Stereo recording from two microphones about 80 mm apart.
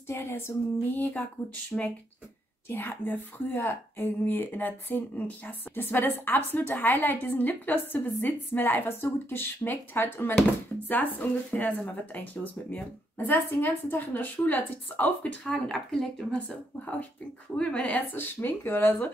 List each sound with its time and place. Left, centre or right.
0.1 s a sound: left
0.9 s a woman's voice: left
2.7 s a woman's voice: left
13.3 s a woman's voice: left
15.4 s speech: centre
16.4 s a woman's voice: centre